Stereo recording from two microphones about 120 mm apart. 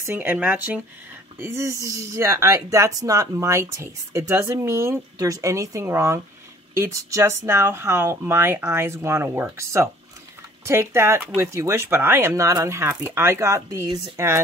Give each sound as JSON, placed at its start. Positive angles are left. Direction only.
{"t": 0.0, "sound": "speech", "side_deg": -15}